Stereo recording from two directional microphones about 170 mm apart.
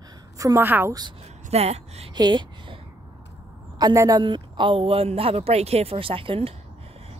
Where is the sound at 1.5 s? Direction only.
35° right (ahead or behind).